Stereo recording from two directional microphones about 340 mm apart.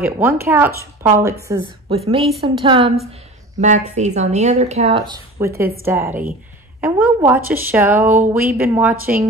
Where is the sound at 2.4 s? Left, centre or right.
Centre.